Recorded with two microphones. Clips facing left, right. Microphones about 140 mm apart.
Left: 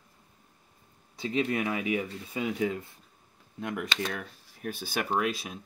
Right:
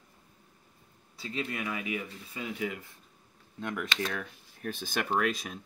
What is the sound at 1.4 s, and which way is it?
Speech, 30° left (ahead or behind).